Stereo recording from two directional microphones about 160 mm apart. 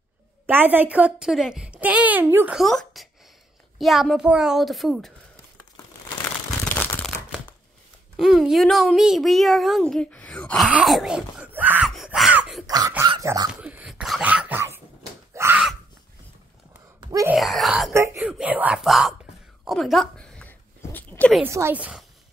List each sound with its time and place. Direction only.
0.5 s a child's voice: 10° right (ahead or behind)
2.6 s speech: centre (ahead or behind)
6.7 s crumpling: 10° left (ahead or behind)
8.2 s speech: centre (ahead or behind)
10.7 s wail: centre (ahead or behind)
11.9 s groan: centre (ahead or behind)
12.6 s dog: 25° right (ahead or behind)
13.6 s a sound: 5° right (ahead or behind)
17.0 s wail: 20° right (ahead or behind)
17.3 s speech: centre (ahead or behind)
17.9 s speech: 15° right (ahead or behind)
19.6 s a sound: centre (ahead or behind)
21.4 s a child's voice: 15° right (ahead or behind)